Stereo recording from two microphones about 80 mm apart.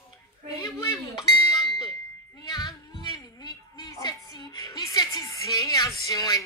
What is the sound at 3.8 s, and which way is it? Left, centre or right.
Music, left.